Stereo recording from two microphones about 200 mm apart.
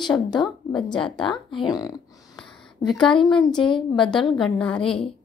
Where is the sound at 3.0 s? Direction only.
5° left (ahead or behind).